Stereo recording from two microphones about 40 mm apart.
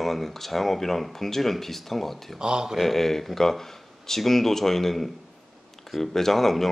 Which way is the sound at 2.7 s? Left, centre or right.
Centre.